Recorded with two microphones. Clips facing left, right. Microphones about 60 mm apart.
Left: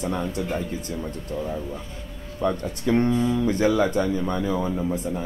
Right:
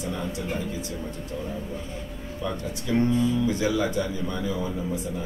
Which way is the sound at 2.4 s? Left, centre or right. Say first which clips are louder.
Left 7 dB; left.